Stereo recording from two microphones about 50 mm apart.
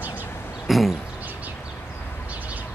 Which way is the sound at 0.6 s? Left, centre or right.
Centre.